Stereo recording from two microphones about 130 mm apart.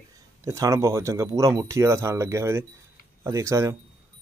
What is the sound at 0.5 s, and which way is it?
A man's voice, 25° right (ahead or behind).